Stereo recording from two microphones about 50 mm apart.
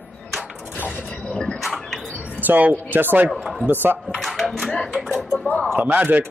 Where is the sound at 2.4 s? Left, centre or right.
Right.